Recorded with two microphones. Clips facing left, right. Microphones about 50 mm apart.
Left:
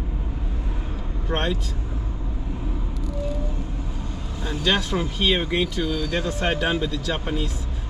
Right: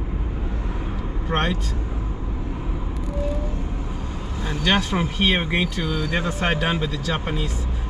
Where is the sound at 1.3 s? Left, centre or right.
Centre.